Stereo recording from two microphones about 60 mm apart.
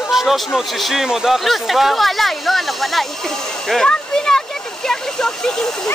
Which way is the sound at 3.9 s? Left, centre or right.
Centre.